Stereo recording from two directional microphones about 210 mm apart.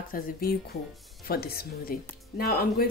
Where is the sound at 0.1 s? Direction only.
45° left (ahead or behind).